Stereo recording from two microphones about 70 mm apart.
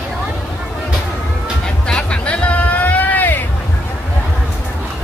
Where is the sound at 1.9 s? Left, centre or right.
Centre.